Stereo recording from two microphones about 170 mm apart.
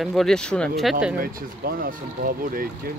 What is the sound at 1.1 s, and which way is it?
Speech, 55° right (ahead or behind).